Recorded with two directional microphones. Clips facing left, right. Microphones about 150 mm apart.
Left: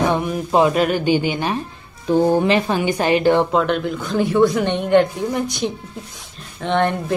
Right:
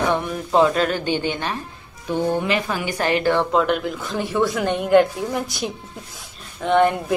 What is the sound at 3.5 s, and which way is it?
A woman's voice, 5° right (ahead or behind).